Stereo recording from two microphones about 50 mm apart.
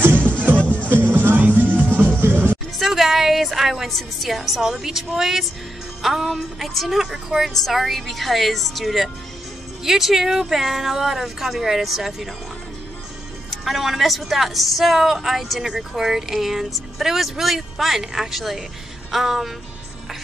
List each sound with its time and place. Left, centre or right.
0.0 s music: right
2.8 s a woman's voice: centre
13.5 s speech: centre